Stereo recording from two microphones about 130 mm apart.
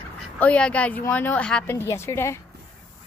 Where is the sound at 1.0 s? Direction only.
15° left (ahead or behind).